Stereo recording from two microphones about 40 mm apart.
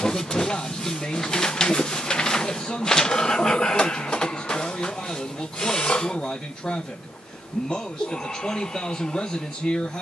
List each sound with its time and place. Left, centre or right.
0.0 s a man's voice: centre